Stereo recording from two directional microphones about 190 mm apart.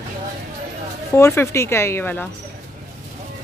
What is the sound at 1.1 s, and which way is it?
A woman's voice, 15° left (ahead or behind).